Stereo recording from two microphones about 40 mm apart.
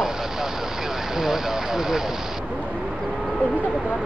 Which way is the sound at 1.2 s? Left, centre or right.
Centre.